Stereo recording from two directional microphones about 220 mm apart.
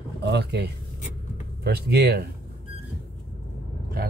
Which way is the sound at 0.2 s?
50° right (ahead or behind).